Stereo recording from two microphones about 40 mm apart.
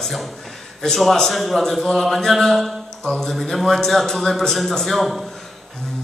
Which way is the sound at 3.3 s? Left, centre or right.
Centre.